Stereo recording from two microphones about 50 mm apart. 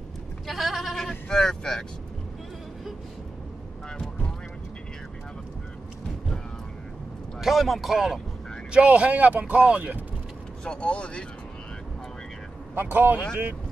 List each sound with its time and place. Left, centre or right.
0.5 s goat: centre
0.9 s vehicle: centre
7.3 s speech: centre
8.7 s a man's voice: right
9.8 s speech: right
10.6 s speech: centre
12.7 s speech: right